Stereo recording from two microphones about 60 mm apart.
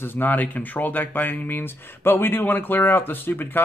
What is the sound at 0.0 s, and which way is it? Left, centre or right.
Speech, left.